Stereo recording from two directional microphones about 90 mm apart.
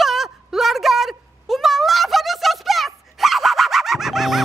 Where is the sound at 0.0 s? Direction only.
5° right (ahead or behind).